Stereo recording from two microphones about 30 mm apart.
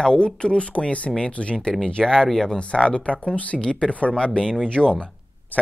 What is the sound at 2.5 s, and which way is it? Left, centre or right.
Speech, left.